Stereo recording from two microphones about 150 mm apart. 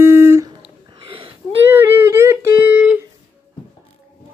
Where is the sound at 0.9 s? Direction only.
35° right (ahead or behind).